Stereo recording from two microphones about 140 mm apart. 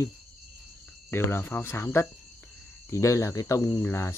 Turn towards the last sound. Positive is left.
turn(degrees=20)  # may be behind; listen again after turning